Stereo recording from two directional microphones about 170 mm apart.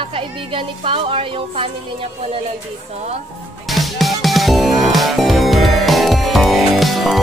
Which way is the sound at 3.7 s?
Centre (ahead or behind).